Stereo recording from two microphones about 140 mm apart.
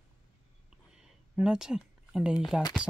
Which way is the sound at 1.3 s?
5° right (ahead or behind).